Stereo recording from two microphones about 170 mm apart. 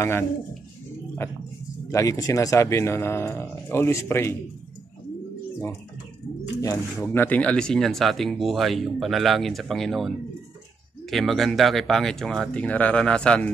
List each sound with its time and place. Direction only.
0.0 s speech: 15° left (ahead or behind)
1.9 s speech: 20° left (ahead or behind)
6.6 s speech: 15° left (ahead or behind)